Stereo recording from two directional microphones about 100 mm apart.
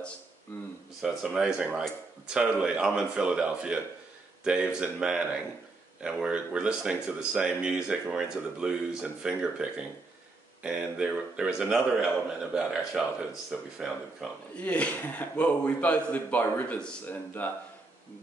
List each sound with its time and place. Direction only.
0.5 s a sound: 20° left (ahead or behind)
1.0 s speech: 5° right (ahead or behind)
14.6 s a man's voice: 15° left (ahead or behind)